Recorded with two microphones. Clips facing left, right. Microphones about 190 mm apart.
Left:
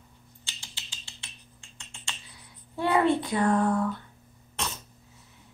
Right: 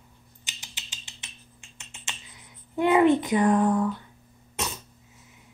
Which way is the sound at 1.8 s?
20° right (ahead or behind).